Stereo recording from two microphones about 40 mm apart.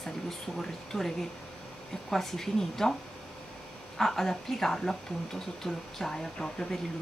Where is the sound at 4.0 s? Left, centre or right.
Centre.